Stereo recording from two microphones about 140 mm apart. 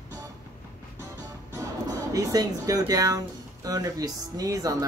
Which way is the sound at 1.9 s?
25° right (ahead or behind).